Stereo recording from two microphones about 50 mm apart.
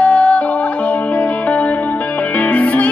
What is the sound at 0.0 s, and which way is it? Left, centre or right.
Music, left.